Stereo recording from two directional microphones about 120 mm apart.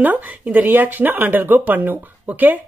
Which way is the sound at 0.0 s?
15° right (ahead or behind).